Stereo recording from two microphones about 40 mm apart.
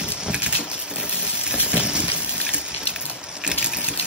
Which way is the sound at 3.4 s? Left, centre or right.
Right.